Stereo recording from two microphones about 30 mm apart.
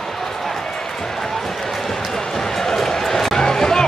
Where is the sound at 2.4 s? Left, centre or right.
Centre.